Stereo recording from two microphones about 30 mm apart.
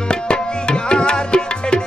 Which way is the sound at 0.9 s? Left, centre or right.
Left.